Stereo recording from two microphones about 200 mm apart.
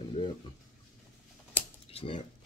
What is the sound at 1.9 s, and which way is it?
Speech, 30° left (ahead or behind).